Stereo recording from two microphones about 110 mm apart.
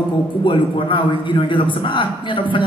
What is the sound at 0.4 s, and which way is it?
Speech, 50° left (ahead or behind).